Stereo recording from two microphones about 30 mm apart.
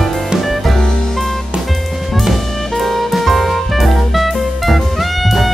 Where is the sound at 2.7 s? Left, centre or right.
Centre.